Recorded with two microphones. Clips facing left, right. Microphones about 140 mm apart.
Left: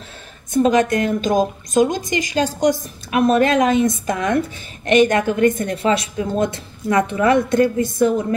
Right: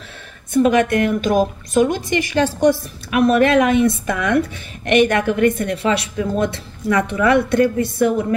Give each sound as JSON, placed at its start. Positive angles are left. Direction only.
{"t": 0.5, "sound": "a woman's voice", "side_deg": 35}
{"t": 2.8, "sound": "a woman's voice", "side_deg": 35}
{"t": 6.9, "sound": "a woman's voice", "side_deg": 25}